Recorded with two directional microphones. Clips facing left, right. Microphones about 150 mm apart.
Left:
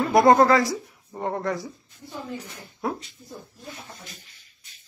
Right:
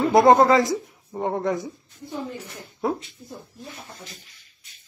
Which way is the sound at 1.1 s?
5° right (ahead or behind).